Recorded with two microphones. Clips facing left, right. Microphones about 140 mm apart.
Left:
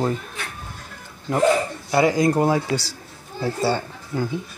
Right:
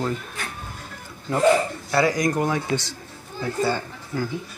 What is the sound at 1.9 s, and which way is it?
Speech, 25° left (ahead or behind).